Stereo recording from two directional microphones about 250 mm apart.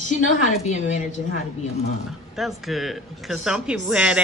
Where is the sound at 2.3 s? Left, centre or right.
Centre.